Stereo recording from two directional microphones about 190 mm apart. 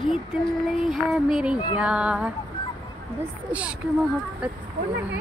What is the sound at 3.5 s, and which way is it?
Speech, 5° right (ahead or behind).